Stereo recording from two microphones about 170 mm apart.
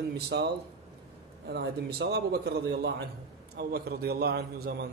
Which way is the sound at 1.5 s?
75° right (ahead or behind).